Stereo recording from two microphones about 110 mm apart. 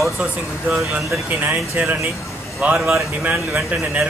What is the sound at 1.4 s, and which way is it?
Speech, 15° right (ahead or behind).